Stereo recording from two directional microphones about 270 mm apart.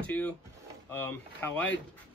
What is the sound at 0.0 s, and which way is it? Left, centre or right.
Drawer open or close, centre.